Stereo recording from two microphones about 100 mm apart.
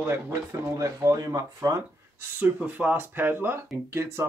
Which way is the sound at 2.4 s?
15° right (ahead or behind).